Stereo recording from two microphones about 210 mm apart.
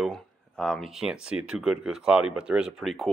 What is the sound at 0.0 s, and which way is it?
Speech, centre (ahead or behind).